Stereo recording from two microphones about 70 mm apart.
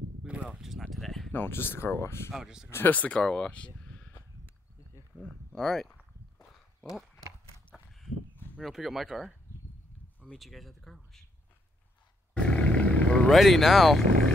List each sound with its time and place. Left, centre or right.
0.3 s a sound: centre
0.6 s speech: centre
1.3 s speech: left
2.3 s speech: centre
2.7 s speech: left
5.2 s a sound: centre
8.5 s speech: centre
10.3 s speech: centre
12.4 s roar: centre
13.3 s speech: centre